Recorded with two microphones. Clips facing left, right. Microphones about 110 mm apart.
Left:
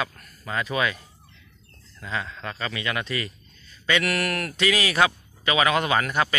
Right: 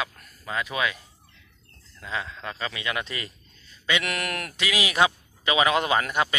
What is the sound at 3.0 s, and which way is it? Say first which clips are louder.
A man's voice: left 6 dB; 25° right (ahead or behind).